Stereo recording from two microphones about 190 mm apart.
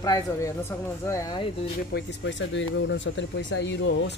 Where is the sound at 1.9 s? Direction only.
70° left (ahead or behind).